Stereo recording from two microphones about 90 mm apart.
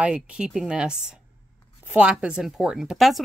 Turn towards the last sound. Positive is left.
turn(degrees=0)  # may be behind; listen again after turning